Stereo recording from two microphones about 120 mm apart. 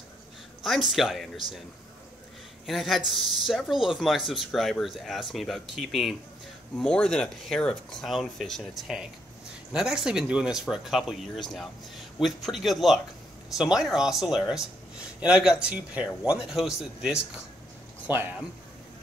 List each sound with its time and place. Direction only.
0.7 s speech: centre (ahead or behind)
2.6 s speech: centre (ahead or behind)
18.0 s speech: 15° right (ahead or behind)